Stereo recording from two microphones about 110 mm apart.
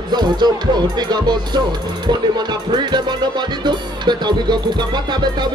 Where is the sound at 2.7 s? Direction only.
40° right (ahead or behind).